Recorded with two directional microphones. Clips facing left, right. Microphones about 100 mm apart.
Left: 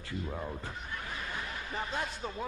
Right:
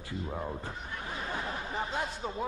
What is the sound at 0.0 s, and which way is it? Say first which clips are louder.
Speech: right 1 dB; 25° right (ahead or behind).